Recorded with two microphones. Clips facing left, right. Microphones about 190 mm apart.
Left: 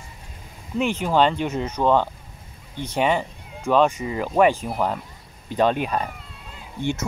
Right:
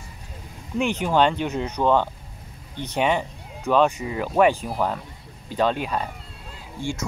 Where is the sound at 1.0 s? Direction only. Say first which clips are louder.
Left 1 dB; 5° left (ahead or behind).